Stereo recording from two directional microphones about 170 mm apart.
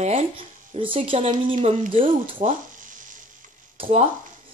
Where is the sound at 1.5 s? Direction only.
50° right (ahead or behind).